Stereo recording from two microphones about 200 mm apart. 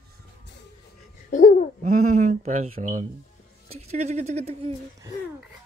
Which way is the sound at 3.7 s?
30° right (ahead or behind).